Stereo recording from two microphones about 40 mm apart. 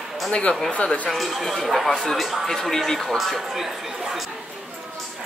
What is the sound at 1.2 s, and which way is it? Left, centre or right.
Speech, centre.